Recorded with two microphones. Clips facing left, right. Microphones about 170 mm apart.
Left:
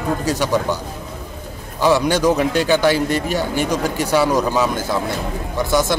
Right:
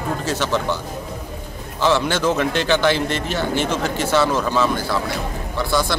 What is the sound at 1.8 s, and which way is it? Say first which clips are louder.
A man's voice: left 3 dB; 15° left (ahead or behind).